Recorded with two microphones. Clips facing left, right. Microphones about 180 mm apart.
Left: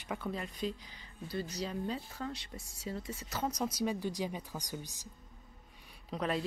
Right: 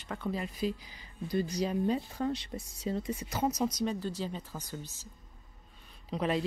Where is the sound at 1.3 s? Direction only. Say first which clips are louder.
Right 7 dB; 15° right (ahead or behind).